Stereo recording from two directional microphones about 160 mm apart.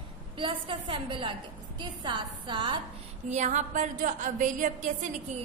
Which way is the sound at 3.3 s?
50° right (ahead or behind).